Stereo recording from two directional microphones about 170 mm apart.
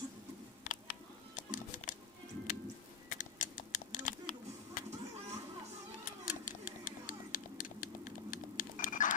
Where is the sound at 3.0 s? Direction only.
50° left (ahead or behind).